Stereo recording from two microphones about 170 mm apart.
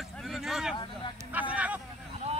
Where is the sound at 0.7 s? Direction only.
30° left (ahead or behind).